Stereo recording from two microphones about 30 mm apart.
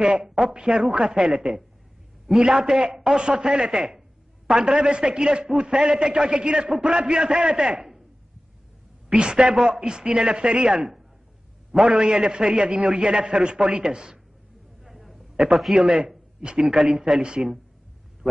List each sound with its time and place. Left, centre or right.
0.2 s a man's voice: centre
1.3 s speech: centre
2.3 s a man's voice: right
9.1 s speech: right
11.9 s speech: right
14.9 s a sound: centre
15.1 s a sound: centre
15.7 s speech: right
18.2 s a sound: centre